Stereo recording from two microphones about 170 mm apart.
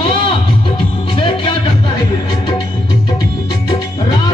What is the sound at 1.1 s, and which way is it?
Music, 30° left (ahead or behind).